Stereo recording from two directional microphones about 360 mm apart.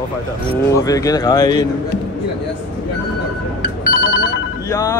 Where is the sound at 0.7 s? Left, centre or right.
Centre.